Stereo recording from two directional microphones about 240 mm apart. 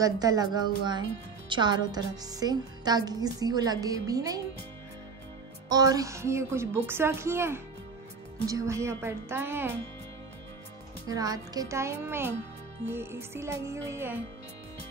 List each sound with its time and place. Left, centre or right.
0.0 s speech: centre
5.7 s speech: centre
11.1 s speech: centre